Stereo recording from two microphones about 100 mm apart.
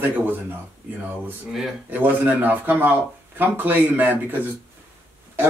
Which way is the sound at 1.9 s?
20° right (ahead or behind).